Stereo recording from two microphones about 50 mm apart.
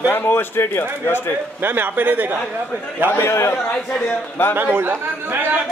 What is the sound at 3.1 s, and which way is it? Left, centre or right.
Speech, left.